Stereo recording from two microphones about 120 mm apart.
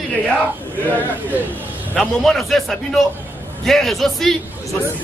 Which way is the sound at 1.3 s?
15° right (ahead or behind).